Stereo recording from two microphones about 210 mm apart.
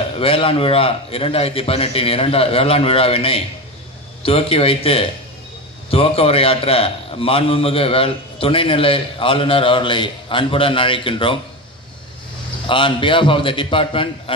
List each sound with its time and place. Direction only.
0.2 s a man's voice: 25° left (ahead or behind)
12.6 s a man's voice: 25° left (ahead or behind)